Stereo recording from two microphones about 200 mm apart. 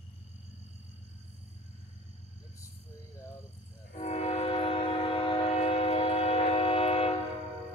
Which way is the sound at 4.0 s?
35° left (ahead or behind).